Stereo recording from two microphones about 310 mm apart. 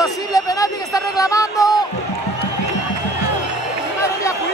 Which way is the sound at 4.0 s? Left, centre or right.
Centre.